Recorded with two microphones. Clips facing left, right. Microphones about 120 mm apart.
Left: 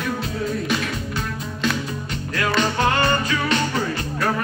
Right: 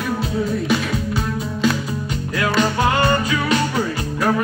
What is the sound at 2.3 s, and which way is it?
Music, 10° right (ahead or behind).